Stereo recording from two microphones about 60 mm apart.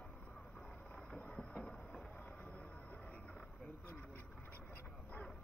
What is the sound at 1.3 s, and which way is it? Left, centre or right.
Train, centre.